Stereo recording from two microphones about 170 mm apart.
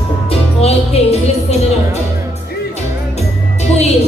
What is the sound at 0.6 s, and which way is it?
Music, 35° left (ahead or behind).